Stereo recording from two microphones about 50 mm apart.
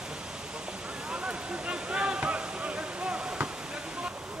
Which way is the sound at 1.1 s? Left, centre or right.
Centre.